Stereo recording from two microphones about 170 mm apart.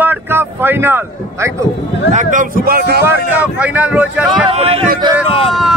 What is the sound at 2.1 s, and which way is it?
Speech, 50° right (ahead or behind).